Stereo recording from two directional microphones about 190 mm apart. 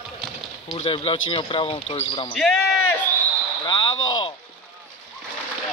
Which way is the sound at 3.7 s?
25° left (ahead or behind).